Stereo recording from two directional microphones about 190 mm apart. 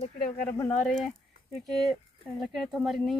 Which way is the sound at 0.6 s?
Centre (ahead or behind).